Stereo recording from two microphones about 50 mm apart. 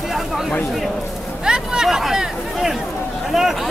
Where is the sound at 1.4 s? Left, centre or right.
Centre.